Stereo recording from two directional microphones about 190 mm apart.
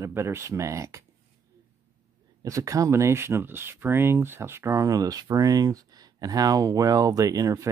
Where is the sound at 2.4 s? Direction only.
15° right (ahead or behind).